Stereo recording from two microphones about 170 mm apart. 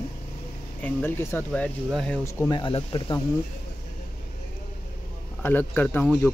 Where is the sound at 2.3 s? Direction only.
25° left (ahead or behind).